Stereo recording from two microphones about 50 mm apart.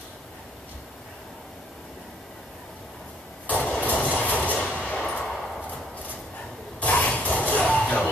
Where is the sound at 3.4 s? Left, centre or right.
Left.